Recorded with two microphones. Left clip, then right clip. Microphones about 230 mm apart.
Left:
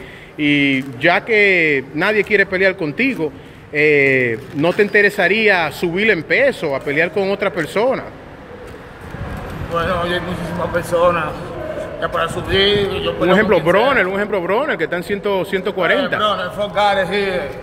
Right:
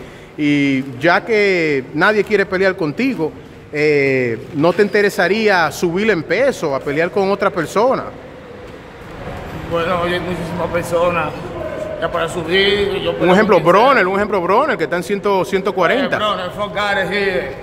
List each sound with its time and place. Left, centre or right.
0.4 s a man's voice: centre
9.8 s a man's voice: centre